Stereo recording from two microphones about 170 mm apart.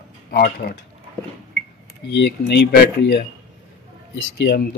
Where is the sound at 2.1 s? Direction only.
90° left.